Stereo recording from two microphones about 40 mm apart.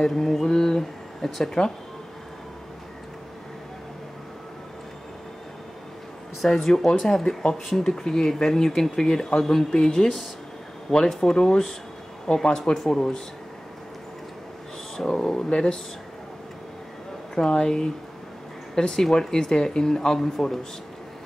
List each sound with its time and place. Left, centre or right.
0.0 s speech: centre
6.4 s speech: centre
15.1 s speech: centre
17.4 s speech: centre